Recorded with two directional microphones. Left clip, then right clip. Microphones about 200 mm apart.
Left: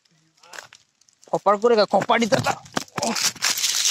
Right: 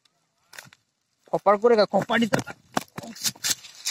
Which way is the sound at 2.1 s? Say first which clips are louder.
Left 5 dB; 20° left (ahead or behind).